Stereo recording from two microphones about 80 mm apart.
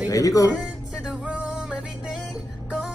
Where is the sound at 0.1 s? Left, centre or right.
Left.